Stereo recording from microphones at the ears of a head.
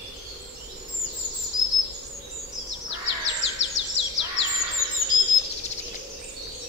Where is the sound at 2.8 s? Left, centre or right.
Left.